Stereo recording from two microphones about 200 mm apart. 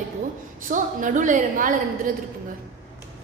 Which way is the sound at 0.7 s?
40° right (ahead or behind).